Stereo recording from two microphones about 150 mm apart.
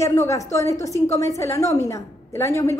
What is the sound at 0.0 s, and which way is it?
A woman's voice, 20° left (ahead or behind).